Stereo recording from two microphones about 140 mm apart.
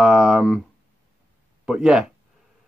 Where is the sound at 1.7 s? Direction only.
5° right (ahead or behind).